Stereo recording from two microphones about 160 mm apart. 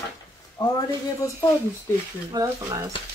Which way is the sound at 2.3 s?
20° right (ahead or behind).